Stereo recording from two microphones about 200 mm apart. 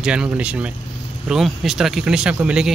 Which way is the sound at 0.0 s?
5° right (ahead or behind).